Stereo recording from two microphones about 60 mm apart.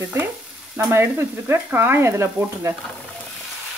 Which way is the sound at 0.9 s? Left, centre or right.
Right.